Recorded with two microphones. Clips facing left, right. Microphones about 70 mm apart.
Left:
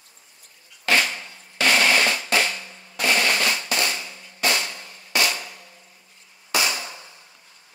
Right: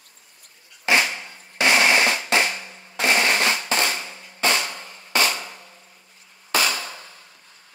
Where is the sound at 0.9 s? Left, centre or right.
Centre; by 5.6 s right.